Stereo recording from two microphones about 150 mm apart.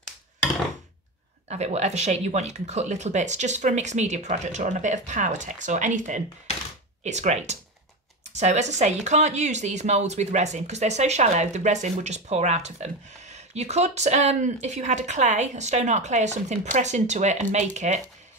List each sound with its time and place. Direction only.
1.5 s speech: 50° right (ahead or behind)